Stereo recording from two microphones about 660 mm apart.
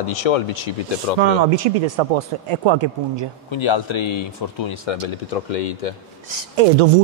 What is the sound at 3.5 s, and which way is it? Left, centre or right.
Speech, left.